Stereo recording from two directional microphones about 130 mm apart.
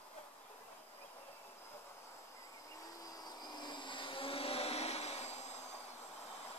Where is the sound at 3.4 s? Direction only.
35° left (ahead or behind); by 5.4 s 55° left (ahead or behind).